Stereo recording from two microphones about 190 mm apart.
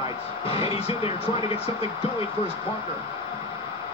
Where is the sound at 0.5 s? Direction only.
30° left (ahead or behind).